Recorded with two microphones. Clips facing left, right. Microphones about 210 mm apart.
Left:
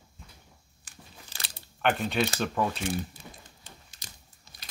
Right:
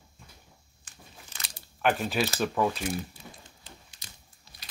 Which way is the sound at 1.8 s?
Centre (ahead or behind).